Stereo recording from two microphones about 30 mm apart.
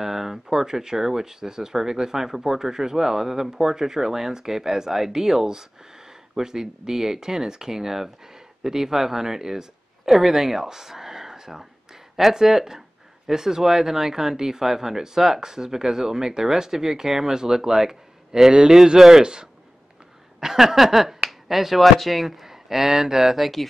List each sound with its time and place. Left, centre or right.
0.0 s speech: centre
20.3 s speech: centre
23.3 s speech: centre